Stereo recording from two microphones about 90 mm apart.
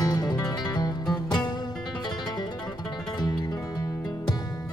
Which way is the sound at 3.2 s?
50° left (ahead or behind).